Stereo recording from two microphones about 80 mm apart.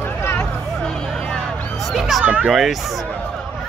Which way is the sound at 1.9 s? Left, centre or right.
Centre.